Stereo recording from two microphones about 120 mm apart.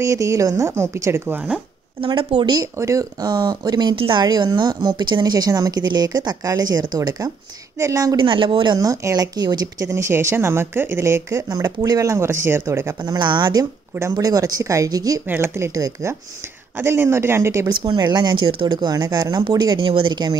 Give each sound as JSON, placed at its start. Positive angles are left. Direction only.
{"t": 0.0, "sound": "speech", "side_deg": -25}
{"t": 2.0, "sound": "a woman's voice", "side_deg": -45}
{"t": 2.6, "sound": "speech", "side_deg": -25}
{"t": 8.2, "sound": "a woman's voice", "side_deg": -45}
{"t": 8.7, "sound": "speech", "side_deg": -30}
{"t": 13.0, "sound": "speech", "side_deg": -40}
{"t": 15.2, "sound": "speech", "side_deg": -20}
{"t": 17.6, "sound": "speech", "side_deg": -40}